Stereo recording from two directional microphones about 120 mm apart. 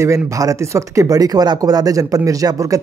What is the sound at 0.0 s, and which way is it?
Speech, 25° right (ahead or behind).